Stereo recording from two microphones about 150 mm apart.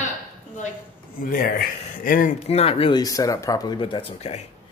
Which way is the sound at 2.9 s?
25° left (ahead or behind).